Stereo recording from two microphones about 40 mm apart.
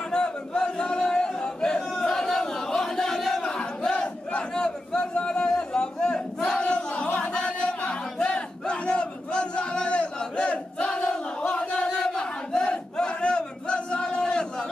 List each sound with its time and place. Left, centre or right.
0.1 s chant: centre
3.2 s battle cry: centre
3.9 s battle cry: left
5.1 s a sound: left
6.6 s battle cry: left